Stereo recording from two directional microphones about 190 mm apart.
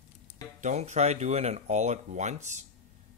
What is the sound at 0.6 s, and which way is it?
Speech, 40° right (ahead or behind).